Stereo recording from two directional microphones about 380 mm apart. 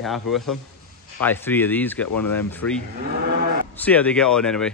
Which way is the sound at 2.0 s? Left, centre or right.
Left.